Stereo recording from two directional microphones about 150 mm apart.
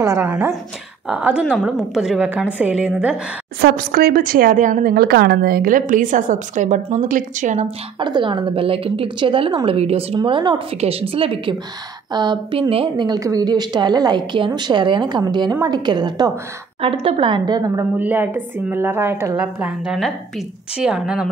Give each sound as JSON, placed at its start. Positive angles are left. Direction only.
{"t": 0.0, "sound": "a woman's voice", "side_deg": -15}
{"t": 3.6, "sound": "a woman's voice", "side_deg": -85}
{"t": 7.6, "sound": "a woman's voice", "side_deg": -30}
{"t": 16.8, "sound": "a woman's voice", "side_deg": -40}
{"t": 17.9, "sound": "a woman's voice", "side_deg": -15}
{"t": 19.6, "sound": "a woman's voice", "side_deg": -5}